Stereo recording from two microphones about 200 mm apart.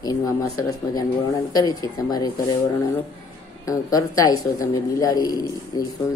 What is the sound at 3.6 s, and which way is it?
A man's voice, 15° left (ahead or behind).